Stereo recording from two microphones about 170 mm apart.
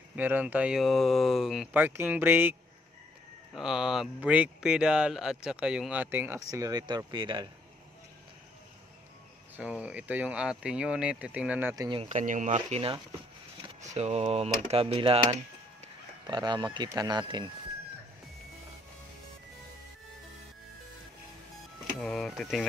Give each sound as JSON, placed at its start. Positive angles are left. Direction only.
{"t": 0.1, "sound": "speech", "side_deg": -10}
{"t": 3.5, "sound": "speech", "side_deg": -5}
{"t": 9.6, "sound": "speech", "side_deg": -5}
{"t": 11.7, "sound": "speech", "side_deg": -20}
{"t": 12.0, "sound": "speech", "side_deg": -45}
{"t": 21.8, "sound": "speech", "side_deg": 0}